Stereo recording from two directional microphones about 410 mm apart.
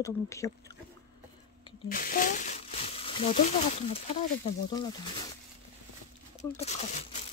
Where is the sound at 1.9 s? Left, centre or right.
Left.